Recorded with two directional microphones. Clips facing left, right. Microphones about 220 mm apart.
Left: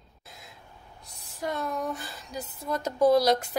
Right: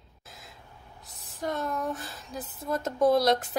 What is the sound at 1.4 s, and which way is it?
Speech, centre (ahead or behind).